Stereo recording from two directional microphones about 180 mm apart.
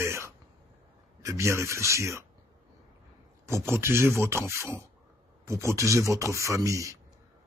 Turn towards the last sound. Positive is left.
turn(degrees=-20)  # may be behind; listen again after turning